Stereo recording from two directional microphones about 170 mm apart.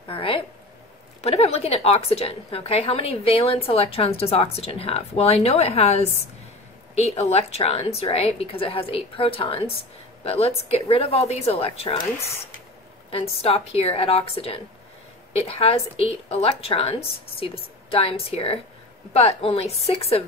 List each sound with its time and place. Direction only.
0.1 s a sound: 30° left (ahead or behind)
1.2 s a woman's voice: 35° left (ahead or behind)
7.1 s a woman's voice: 40° left (ahead or behind)
13.1 s a woman's voice: 35° left (ahead or behind)